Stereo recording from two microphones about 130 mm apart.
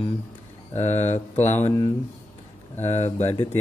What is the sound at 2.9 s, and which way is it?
Speech, 15° left (ahead or behind).